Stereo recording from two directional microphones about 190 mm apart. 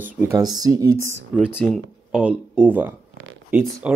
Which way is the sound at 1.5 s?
10° left (ahead or behind).